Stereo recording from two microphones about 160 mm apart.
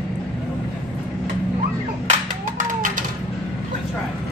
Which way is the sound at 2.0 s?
55° right (ahead or behind).